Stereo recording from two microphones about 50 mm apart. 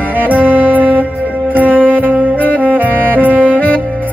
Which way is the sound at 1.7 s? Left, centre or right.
Left.